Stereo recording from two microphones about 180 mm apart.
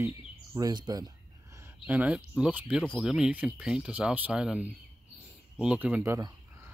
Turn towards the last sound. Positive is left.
turn(degrees=-15)  # may be behind; listen again after turning